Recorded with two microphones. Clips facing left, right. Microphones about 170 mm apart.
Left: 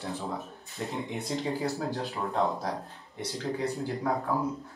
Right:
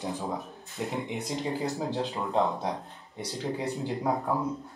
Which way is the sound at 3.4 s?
20° right (ahead or behind).